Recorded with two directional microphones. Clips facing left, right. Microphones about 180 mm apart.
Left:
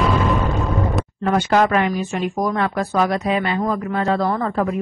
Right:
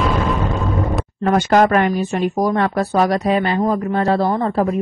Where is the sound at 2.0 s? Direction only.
35° right (ahead or behind).